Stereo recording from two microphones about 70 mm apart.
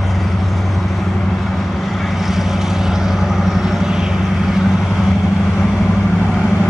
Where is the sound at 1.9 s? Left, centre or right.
Centre.